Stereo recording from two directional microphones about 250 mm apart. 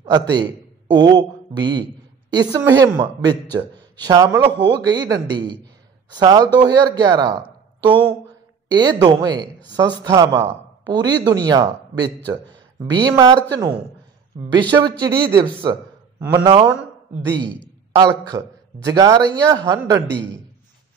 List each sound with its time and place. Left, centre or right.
0.0 s a man's voice: centre
6.1 s a man's voice: centre
8.6 s a man's voice: centre